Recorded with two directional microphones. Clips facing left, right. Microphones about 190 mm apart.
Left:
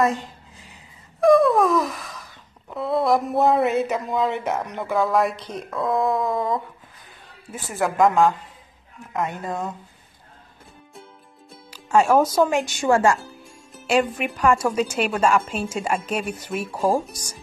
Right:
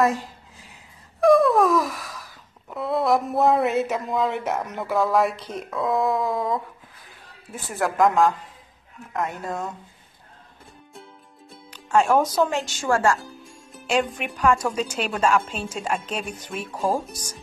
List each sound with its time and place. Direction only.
0.0 s speech: centre (ahead or behind)
1.2 s a sound: centre (ahead or behind)
7.5 s speech: centre (ahead or behind)
11.7 s music: 10° left (ahead or behind)
12.4 s speech: 10° left (ahead or behind)
13.2 s speech: centre (ahead or behind)